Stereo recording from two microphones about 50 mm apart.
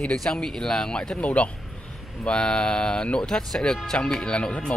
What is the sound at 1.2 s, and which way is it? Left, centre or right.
Speech, left.